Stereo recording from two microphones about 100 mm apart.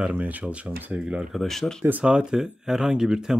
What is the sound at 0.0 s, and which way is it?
Speech, 15° right (ahead or behind).